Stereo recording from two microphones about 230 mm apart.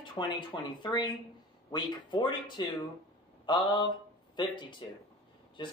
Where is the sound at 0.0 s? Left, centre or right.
Centre.